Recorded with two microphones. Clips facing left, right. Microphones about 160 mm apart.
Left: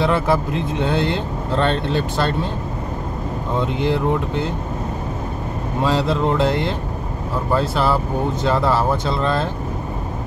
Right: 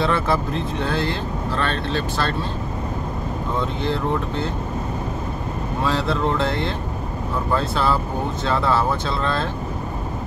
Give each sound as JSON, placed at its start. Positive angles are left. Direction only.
{"t": 0.0, "sound": "speech", "side_deg": 15}
{"t": 3.8, "sound": "speech", "side_deg": 15}
{"t": 5.9, "sound": "speech", "side_deg": 15}